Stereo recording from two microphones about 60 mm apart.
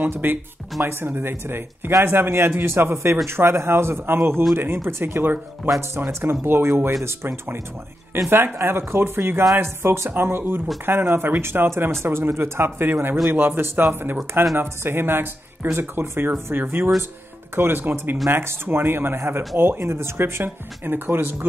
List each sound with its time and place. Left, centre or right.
0.0 s speech: right